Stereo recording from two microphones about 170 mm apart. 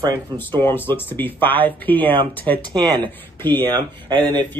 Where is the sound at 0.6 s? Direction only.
10° left (ahead or behind).